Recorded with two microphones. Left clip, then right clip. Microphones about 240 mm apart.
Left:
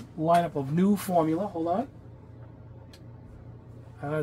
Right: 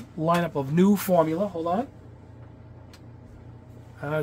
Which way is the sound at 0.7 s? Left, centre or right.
Right.